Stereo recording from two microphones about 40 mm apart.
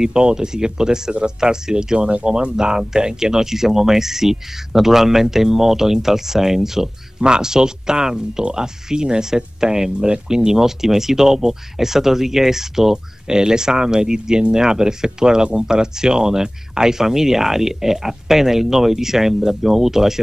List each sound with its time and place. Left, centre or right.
0.0 s speech: centre